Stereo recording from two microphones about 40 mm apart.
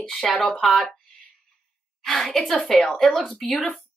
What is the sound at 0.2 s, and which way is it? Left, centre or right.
Speech, centre.